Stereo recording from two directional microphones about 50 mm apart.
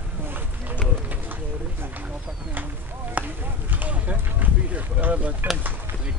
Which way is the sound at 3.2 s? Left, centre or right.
Right.